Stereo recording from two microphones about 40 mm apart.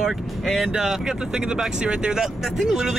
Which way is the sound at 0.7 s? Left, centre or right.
Centre.